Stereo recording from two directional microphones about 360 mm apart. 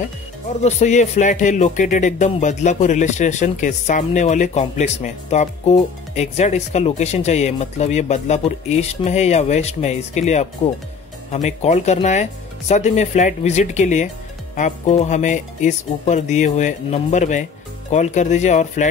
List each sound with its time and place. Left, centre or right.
0.7 s speech: centre